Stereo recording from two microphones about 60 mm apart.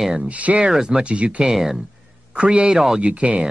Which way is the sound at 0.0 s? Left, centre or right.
Centre.